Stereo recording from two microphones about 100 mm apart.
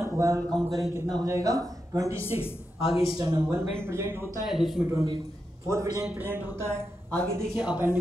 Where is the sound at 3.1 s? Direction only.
40° right (ahead or behind).